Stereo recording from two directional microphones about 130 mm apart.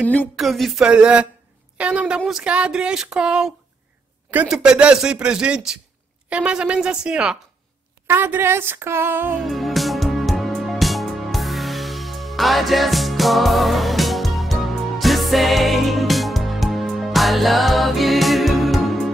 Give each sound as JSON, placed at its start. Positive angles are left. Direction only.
{"t": 0.0, "sound": "speech", "side_deg": 10}
{"t": 0.4, "sound": "a sound", "side_deg": 0}
{"t": 1.8, "sound": "speech", "side_deg": -10}
{"t": 9.5, "sound": "music", "side_deg": 0}